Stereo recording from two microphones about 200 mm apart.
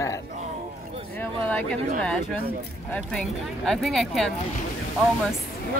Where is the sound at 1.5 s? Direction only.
5° left (ahead or behind).